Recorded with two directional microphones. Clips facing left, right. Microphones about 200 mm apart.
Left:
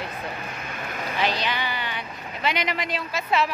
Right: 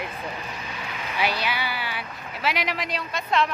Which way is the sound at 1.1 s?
10° right (ahead or behind).